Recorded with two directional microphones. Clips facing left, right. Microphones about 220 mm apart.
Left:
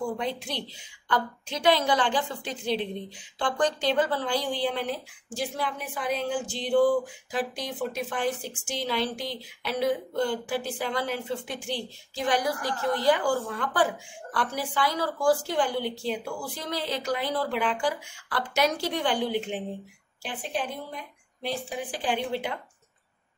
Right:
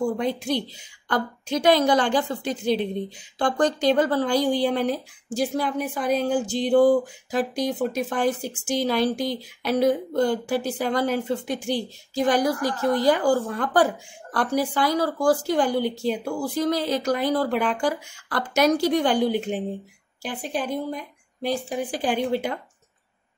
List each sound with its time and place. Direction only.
0.2 s a woman's voice: 45° right (ahead or behind)
20.6 s a woman's voice: 45° right (ahead or behind)